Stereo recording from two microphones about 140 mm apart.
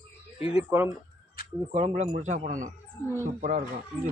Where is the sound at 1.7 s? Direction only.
45° right (ahead or behind).